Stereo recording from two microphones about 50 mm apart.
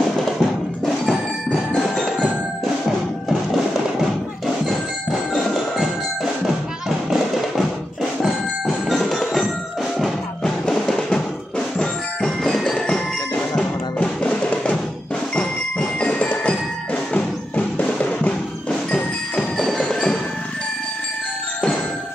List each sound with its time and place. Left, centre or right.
0.0 s music: centre
1.8 s percussion: centre
2.6 s music: centre
5.3 s tubular bells: centre
6.4 s music: centre
8.6 s music: centre
13.9 s percussion: centre
15.3 s music: centre
18.7 s tubular bells: centre
19.5 s tubular bells: centre